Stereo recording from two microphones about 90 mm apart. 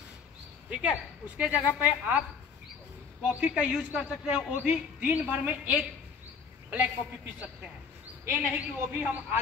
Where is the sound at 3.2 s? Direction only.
15° right (ahead or behind).